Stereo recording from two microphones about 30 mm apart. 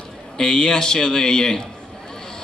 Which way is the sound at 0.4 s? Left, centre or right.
Left.